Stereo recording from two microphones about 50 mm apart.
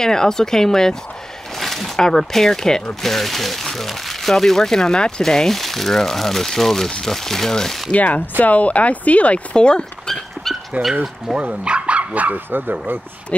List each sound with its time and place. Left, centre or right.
0.0 s speech: centre
7.9 s speech: left; by 10.5 s centre
10.8 s speech: right
11.3 s speech: centre
11.6 s dog: right
12.4 s speech: right